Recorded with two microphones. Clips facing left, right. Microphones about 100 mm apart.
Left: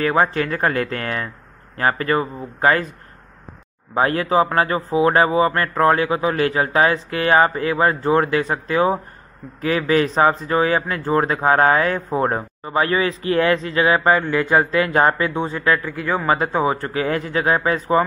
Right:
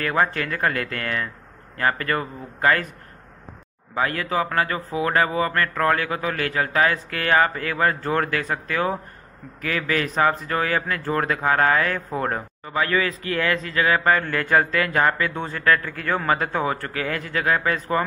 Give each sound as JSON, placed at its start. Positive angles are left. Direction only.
{"t": 0.0, "sound": "speech", "side_deg": 25}
{"t": 3.9, "sound": "speech", "side_deg": 30}
{"t": 15.3, "sound": "speech", "side_deg": 15}